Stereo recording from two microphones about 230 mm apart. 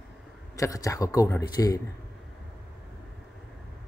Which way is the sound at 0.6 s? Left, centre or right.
Centre.